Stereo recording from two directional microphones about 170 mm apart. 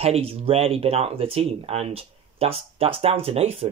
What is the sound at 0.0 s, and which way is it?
Speech, 35° right (ahead or behind).